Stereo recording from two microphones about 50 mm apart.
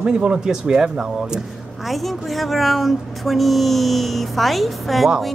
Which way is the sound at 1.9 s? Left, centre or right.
Centre.